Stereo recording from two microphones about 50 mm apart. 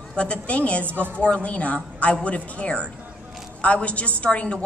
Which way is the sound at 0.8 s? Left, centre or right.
Right.